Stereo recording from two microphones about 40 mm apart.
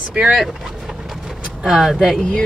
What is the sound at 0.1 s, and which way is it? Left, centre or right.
Speech, right.